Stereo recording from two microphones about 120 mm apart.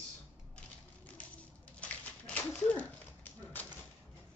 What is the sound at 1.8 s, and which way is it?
Dog, 10° left (ahead or behind).